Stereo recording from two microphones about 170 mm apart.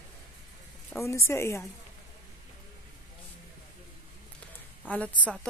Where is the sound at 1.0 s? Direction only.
15° left (ahead or behind).